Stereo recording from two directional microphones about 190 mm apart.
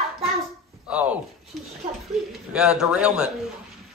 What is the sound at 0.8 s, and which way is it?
A man's voice, 5° right (ahead or behind).